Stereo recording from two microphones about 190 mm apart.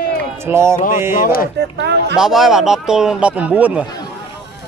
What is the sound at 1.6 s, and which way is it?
Speech, 60° right (ahead or behind).